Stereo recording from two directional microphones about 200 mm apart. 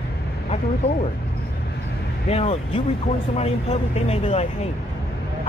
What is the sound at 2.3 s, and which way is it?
Speech, 30° left (ahead or behind).